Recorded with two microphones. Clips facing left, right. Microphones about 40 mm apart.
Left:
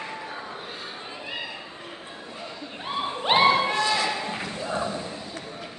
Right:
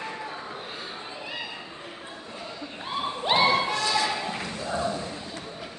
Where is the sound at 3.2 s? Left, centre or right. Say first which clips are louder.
Left 3 dB; left.